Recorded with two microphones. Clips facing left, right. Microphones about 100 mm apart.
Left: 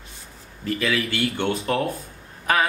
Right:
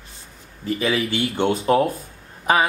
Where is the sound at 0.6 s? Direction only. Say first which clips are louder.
Right 2 dB; 25° right (ahead or behind).